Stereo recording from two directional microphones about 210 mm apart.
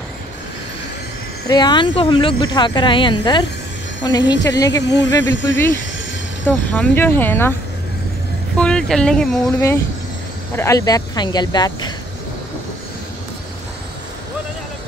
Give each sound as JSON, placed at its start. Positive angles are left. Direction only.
{"t": 1.5, "sound": "speech", "side_deg": 20}
{"t": 4.2, "sound": "speech", "side_deg": 60}
{"t": 6.4, "sound": "speech", "side_deg": 10}
{"t": 8.5, "sound": "speech", "side_deg": 5}